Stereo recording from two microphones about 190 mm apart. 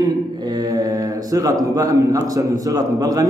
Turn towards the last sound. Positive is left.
turn(degrees=-20)  # may be behind; listen again after turning